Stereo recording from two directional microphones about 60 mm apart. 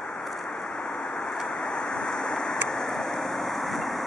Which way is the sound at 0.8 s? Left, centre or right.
Centre.